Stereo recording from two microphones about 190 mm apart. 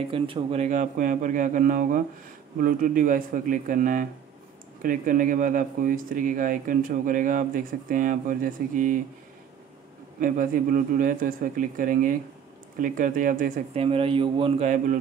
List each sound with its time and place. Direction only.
0.1 s speech: 30° right (ahead or behind); by 8.9 s 45° right (ahead or behind)
10.2 s speech: 45° right (ahead or behind)
13.7 s a man's voice: 30° right (ahead or behind)